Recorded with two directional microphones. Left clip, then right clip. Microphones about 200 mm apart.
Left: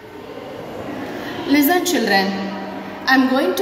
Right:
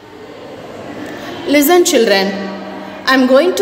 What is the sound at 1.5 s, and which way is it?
A woman's voice, 60° right (ahead or behind).